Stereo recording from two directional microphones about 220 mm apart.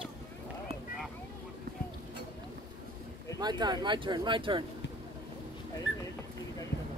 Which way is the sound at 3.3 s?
20° right (ahead or behind).